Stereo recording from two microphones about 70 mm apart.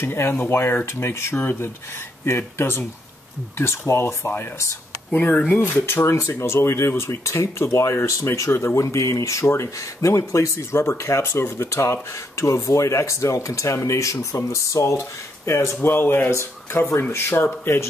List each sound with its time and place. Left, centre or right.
0.0 s speech: left
5.1 s speech: left
5.6 s speech: left
8.7 s speech: left